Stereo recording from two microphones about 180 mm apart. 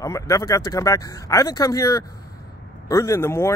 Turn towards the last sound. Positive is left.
turn(degrees=15)  # may be behind; listen again after turning